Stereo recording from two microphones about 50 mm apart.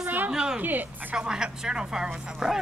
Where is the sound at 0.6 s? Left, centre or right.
Right.